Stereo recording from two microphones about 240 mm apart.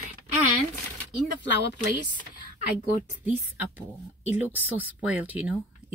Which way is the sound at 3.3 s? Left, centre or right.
Centre.